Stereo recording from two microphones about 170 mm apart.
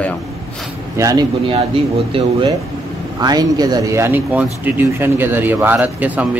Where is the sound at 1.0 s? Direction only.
20° right (ahead or behind).